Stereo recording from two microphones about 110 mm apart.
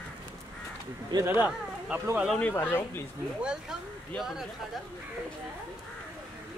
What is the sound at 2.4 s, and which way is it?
Speech, 20° left (ahead or behind).